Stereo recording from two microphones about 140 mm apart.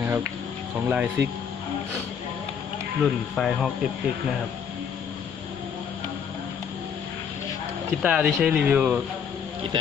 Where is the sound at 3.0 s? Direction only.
Centre (ahead or behind).